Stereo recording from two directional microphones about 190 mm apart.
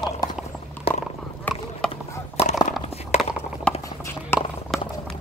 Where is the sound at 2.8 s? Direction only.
35° left (ahead or behind).